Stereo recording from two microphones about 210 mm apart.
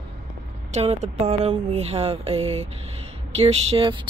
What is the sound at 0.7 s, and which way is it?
Speech, 30° right (ahead or behind).